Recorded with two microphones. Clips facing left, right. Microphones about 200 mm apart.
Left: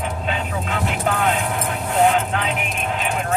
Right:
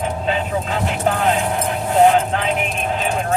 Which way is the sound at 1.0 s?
35° right (ahead or behind).